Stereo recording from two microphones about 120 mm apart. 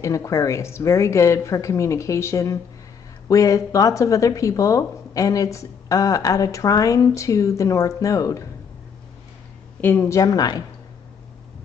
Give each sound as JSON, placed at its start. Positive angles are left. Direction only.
{"t": 0.0, "sound": "speech", "side_deg": 25}
{"t": 9.8, "sound": "speech", "side_deg": 15}